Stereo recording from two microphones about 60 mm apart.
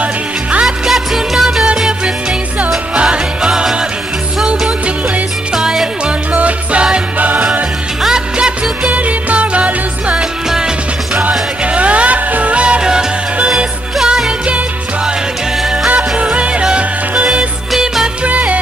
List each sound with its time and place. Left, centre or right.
0.0 s music: right
0.7 s music: centre
3.0 s music: centre
5.5 s music: centre
6.3 s music: right
8.0 s music: centre
11.2 s music: right; by 14.3 s centre
15.9 s music: right